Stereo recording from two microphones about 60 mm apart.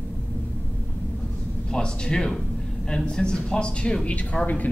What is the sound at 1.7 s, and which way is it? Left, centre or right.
A man's voice, centre.